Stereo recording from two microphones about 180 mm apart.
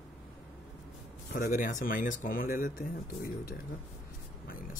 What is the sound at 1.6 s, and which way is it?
Speech, 50° left (ahead or behind).